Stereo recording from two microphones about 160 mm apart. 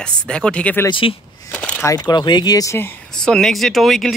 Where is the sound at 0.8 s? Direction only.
30° left (ahead or behind).